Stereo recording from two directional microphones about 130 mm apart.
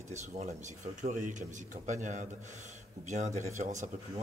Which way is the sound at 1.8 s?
70° right (ahead or behind).